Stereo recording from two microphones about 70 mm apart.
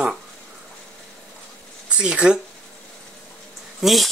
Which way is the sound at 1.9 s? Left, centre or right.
Centre.